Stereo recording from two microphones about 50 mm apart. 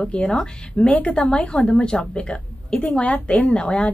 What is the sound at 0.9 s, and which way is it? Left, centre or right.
A woman's voice, left.